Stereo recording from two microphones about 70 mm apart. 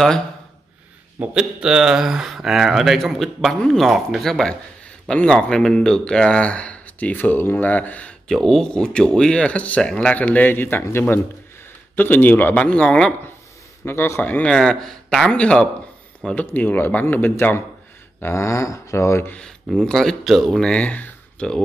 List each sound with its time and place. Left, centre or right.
1.2 s speech: centre; by 8.1 s left
8.3 s speech: centre; by 12.5 s left
12.5 s speech: centre
13.8 s a man's voice: left
14.2 s speech: left
14.5 s speech: centre
16.3 s speech: left
18.2 s speech: left
19.3 s speech: centre